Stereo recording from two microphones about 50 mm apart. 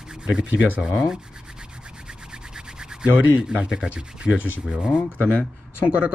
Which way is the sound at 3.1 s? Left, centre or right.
Right.